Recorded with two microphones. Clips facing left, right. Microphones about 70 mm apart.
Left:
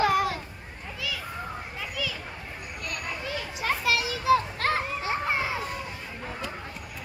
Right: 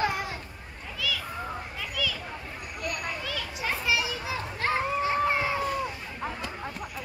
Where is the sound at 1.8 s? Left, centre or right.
Centre.